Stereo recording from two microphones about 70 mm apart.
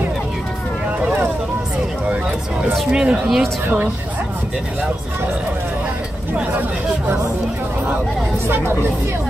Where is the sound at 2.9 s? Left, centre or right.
Centre.